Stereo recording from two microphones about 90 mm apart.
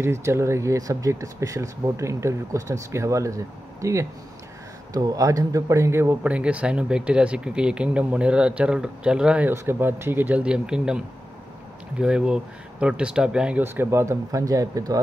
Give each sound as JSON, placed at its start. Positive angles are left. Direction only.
{"t": 0.0, "sound": "speech", "side_deg": -30}
{"t": 6.2, "sound": "speech", "side_deg": -15}
{"t": 9.5, "sound": "speech", "side_deg": -25}
{"t": 10.4, "sound": "speech", "side_deg": -10}
{"t": 12.0, "sound": "speech", "side_deg": -10}
{"t": 13.6, "sound": "speech", "side_deg": -25}